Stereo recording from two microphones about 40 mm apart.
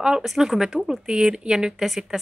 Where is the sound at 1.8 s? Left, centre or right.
Centre.